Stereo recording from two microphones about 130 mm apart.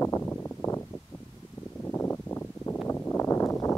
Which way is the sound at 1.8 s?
15° left (ahead or behind).